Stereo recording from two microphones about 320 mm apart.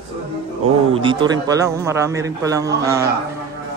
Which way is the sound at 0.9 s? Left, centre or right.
Centre.